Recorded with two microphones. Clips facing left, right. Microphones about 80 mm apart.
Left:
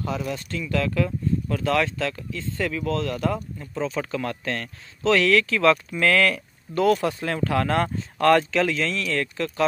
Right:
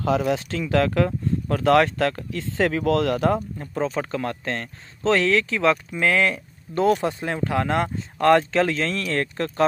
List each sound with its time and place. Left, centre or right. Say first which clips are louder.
0.0 s speech: right 7 dB; right
3.7 s speech: right 2 dB; right
8.5 s speech: right 1 dB; right